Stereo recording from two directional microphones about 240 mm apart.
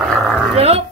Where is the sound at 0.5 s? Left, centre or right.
Right.